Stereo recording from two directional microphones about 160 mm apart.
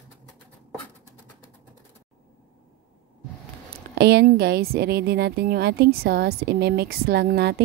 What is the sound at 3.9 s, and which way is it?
A woman's voice, 90° right.